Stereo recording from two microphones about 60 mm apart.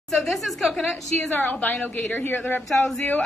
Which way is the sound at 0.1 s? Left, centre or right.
Centre.